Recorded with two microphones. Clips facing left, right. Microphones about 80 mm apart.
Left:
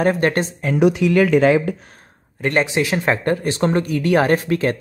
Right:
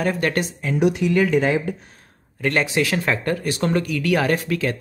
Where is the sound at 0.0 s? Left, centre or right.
Left.